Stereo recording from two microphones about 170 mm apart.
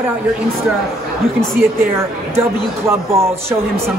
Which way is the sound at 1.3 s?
15° right (ahead or behind).